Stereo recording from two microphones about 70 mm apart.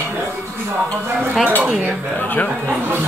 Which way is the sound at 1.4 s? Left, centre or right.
Right.